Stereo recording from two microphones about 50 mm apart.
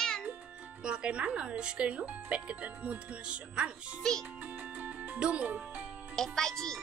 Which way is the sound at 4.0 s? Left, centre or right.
Centre.